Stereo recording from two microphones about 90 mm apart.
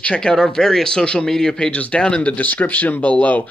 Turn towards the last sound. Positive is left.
turn(degrees=15)  # may be behind; listen again after turning